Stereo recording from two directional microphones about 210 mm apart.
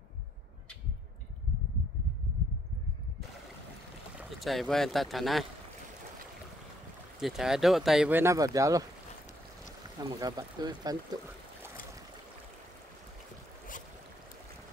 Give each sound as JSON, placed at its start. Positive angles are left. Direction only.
{"t": 4.2, "sound": "speech", "side_deg": 0}
{"t": 7.2, "sound": "speech", "side_deg": 0}
{"t": 10.0, "sound": "speech", "side_deg": -20}